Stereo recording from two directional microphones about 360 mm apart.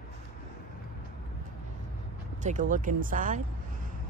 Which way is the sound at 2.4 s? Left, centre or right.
Right.